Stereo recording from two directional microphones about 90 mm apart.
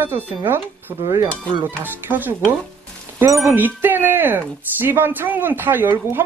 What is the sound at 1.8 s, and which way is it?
Speech, 20° right (ahead or behind).